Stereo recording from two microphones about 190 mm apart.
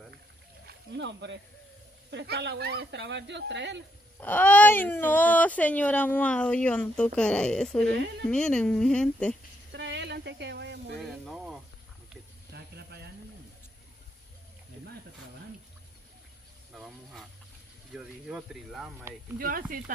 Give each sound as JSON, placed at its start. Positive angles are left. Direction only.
{"t": 0.7, "sound": "speech", "side_deg": -70}
{"t": 4.2, "sound": "speech", "side_deg": 10}
{"t": 9.7, "sound": "a sound", "side_deg": -65}
{"t": 11.0, "sound": "snake", "side_deg": 0}
{"t": 12.5, "sound": "a sound", "side_deg": -60}
{"t": 16.7, "sound": "speech", "side_deg": 0}
{"t": 19.3, "sound": "speech", "side_deg": -50}